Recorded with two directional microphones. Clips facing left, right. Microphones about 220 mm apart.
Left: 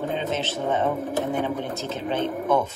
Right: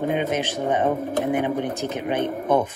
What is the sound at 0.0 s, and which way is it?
Speech, 15° right (ahead or behind).